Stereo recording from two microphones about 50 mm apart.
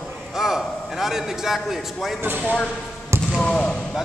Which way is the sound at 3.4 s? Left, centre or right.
Centre.